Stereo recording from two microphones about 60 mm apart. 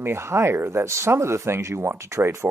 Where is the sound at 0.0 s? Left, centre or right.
Right.